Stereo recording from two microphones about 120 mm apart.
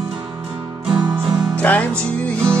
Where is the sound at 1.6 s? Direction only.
15° left (ahead or behind).